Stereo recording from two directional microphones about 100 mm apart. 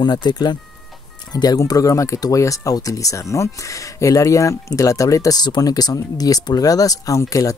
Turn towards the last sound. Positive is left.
turn(degrees=35)  # may be behind; listen again after turning